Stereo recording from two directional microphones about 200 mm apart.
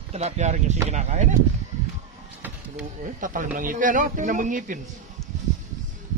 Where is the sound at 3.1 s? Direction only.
40° right (ahead or behind).